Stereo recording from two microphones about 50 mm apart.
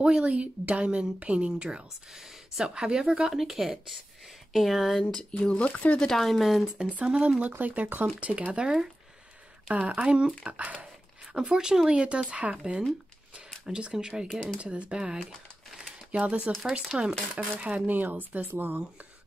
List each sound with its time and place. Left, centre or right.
0.0 s a woman's voice: right; by 5.0 s centre
5.1 s speech: centre
5.9 s speech: centre
7.0 s a woman's voice: right
11.3 s a woman's voice: centre
14.3 s speech: centre
14.6 s a woman's voice: right